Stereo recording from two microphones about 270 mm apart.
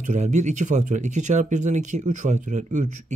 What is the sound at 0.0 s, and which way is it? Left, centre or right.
Speech, right.